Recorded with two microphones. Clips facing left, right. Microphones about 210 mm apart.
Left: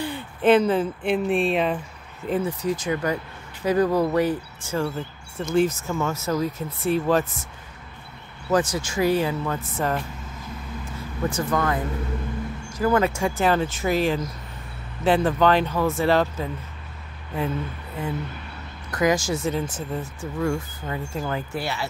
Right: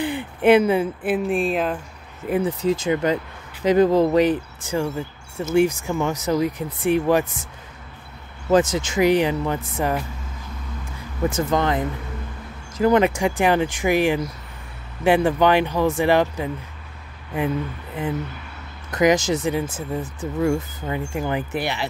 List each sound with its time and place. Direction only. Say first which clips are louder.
0.0 s speech: right 3 dB; 15° right (ahead or behind)
2.2 s speech: right 3 dB; 10° right (ahead or behind)
2.6 s speech: right 4 dB; 25° right (ahead or behind)
8.5 s speech: right 4 dB; 20° right (ahead or behind)
11.2 s speech: right 3 dB; 25° right (ahead or behind)
18.9 s speech: right 4 dB; 20° right (ahead or behind)